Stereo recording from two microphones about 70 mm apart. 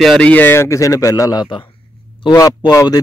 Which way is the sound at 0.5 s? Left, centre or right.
Left.